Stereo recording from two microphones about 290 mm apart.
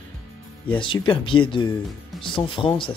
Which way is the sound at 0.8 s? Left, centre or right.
Centre.